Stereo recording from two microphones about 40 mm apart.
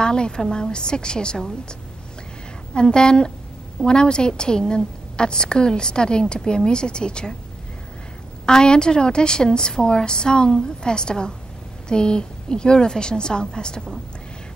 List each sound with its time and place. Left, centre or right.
0.0 s a woman's voice: left
8.5 s a woman's voice: centre